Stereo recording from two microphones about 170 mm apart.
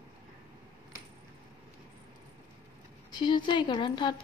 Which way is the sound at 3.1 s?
25° left (ahead or behind).